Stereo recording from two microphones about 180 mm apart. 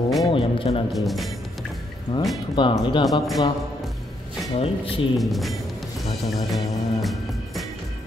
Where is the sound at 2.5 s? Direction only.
25° left (ahead or behind).